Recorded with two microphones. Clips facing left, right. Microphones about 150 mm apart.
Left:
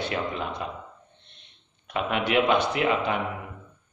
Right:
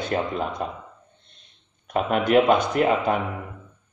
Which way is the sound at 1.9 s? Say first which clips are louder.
Right 6 dB; 45° right (ahead or behind).